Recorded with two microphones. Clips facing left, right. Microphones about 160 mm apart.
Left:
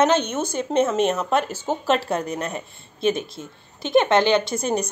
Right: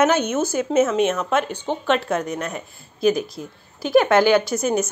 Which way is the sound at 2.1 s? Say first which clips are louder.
Right 1 dB; 30° left (ahead or behind).